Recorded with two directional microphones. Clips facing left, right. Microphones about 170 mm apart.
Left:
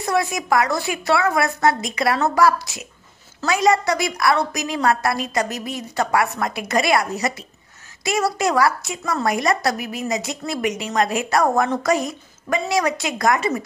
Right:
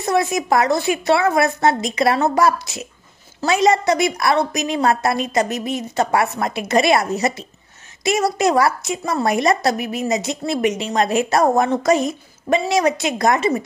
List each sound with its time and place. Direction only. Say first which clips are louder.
0.0 s a woman's voice: right 3 dB; 25° right (ahead or behind)